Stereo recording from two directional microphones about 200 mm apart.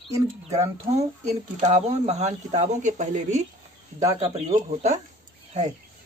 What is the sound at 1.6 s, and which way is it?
Speech, 35° right (ahead or behind).